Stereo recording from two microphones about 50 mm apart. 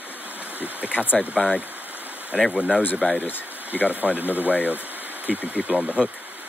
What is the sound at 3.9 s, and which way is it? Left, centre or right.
Speech, right.